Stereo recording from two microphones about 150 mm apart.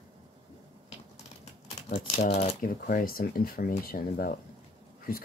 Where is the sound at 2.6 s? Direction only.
70° left (ahead or behind).